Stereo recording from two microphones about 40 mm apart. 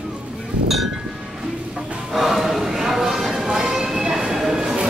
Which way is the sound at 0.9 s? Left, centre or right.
Centre.